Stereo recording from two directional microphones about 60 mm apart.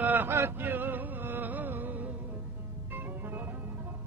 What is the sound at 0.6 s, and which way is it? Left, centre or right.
Music, right.